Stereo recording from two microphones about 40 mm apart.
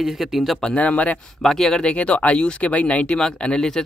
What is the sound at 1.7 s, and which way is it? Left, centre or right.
Speech, left.